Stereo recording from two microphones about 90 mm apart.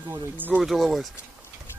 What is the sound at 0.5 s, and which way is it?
Speech, centre (ahead or behind).